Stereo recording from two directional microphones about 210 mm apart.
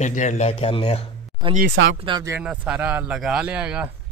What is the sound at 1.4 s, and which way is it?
Speech, 20° right (ahead or behind).